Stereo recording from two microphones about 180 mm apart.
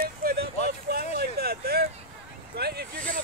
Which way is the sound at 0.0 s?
55° right (ahead or behind).